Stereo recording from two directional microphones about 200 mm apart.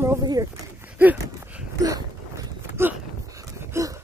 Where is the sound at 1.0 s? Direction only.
10° right (ahead or behind).